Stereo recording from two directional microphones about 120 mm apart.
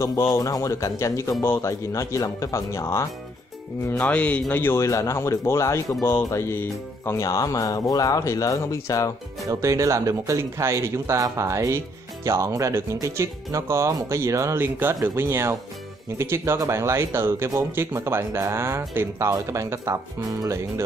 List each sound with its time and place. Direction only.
0.0 s music: 25° left (ahead or behind)
4.0 s music: 10° left (ahead or behind); by 9.1 s 25° left (ahead or behind)
9.5 s speech: 25° right (ahead or behind)